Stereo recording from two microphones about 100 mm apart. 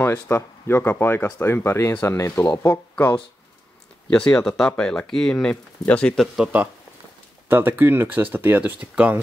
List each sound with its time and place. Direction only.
0.0 s speech: 25° left (ahead or behind)
6.3 s speech: 15° right (ahead or behind)